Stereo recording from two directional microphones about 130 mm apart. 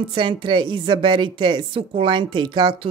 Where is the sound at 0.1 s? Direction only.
40° right (ahead or behind).